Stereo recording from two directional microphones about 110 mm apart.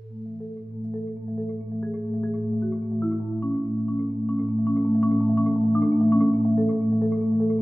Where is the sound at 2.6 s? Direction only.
10° left (ahead or behind).